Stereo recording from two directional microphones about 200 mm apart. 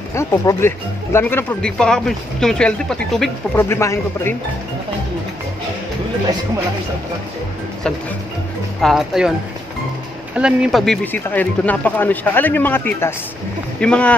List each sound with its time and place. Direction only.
0.1 s speech: 15° left (ahead or behind)
3.6 s speech: 15° left (ahead or behind)
8.8 s speech: centre (ahead or behind)
10.3 s speech: 5° right (ahead or behind)